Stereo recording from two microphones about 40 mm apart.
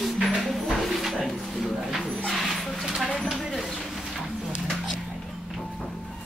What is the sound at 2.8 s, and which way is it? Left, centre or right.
Speech, centre.